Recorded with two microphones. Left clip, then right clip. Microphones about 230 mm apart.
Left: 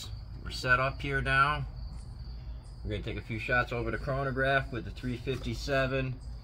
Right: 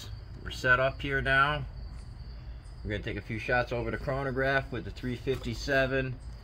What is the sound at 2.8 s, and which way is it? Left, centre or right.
Speech, right.